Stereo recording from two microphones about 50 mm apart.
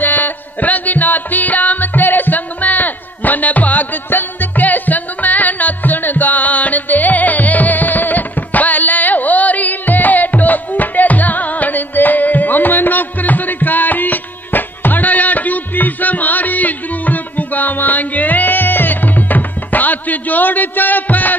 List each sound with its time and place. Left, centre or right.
0.0 s music: left